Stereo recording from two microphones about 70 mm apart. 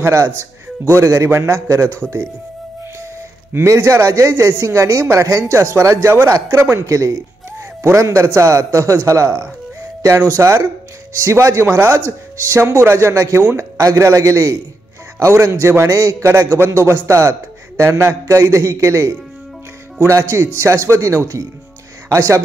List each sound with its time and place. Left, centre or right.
0.0 s speech: right
3.6 s a man's voice: right
18.2 s speech: right